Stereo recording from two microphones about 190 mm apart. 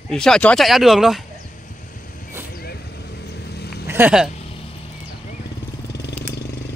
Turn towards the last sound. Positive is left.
turn(degrees=60)  # may be behind; listen again after turning